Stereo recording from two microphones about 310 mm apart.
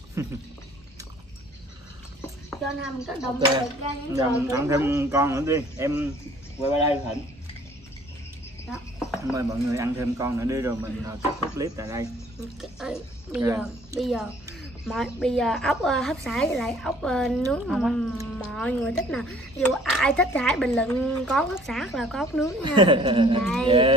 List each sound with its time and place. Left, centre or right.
0.2 s speech: centre
2.5 s speech: centre
8.6 s speech: centre
22.6 s speech: centre
23.4 s speech: centre